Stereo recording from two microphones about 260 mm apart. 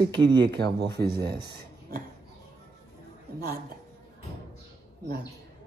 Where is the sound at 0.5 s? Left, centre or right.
Right.